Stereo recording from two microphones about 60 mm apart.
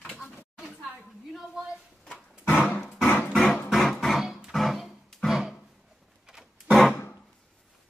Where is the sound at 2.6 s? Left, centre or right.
Centre.